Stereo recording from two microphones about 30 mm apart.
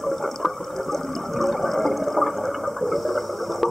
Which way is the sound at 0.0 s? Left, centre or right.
Centre.